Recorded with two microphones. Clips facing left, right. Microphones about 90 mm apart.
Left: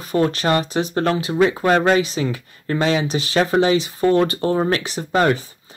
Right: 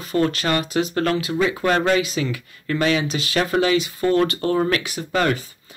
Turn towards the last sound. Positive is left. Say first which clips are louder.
# left 3 dB
turn(degrees=30)  # may be behind; listen again after turning